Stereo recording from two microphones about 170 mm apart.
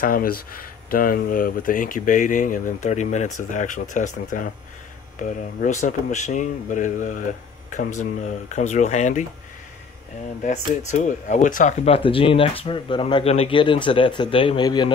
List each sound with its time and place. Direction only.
0.0 s speech: 55° left (ahead or behind)
5.6 s speech: 45° left (ahead or behind)
10.4 s speech: 45° left (ahead or behind); by 14.9 s 25° left (ahead or behind)